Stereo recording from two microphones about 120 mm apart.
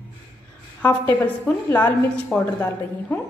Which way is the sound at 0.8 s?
15° left (ahead or behind).